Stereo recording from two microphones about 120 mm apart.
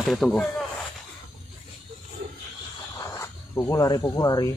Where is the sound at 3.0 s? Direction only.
25° left (ahead or behind).